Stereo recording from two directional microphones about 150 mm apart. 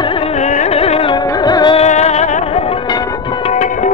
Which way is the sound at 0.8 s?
40° left (ahead or behind).